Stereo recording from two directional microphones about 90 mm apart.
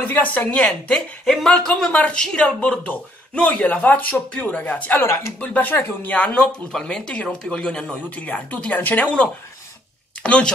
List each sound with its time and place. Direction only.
0.0 s speech: 20° left (ahead or behind)
5.0 s speech: 30° left (ahead or behind)
5.4 s speech: 20° left (ahead or behind)